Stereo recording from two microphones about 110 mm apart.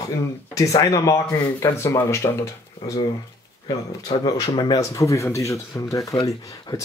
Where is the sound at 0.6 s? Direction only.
30° left (ahead or behind).